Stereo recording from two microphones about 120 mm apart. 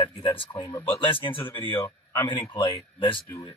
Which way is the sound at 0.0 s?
45° left (ahead or behind).